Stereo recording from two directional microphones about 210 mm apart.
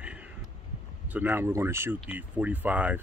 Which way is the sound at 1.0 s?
10° right (ahead or behind).